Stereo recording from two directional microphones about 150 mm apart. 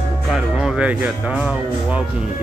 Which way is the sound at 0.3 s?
5° right (ahead or behind).